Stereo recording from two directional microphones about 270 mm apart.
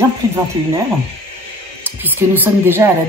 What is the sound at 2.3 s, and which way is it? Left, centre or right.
Speech, centre.